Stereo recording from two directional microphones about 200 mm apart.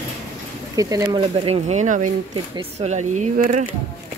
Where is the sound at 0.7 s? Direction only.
15° right (ahead or behind); by 3.7 s 40° right (ahead or behind).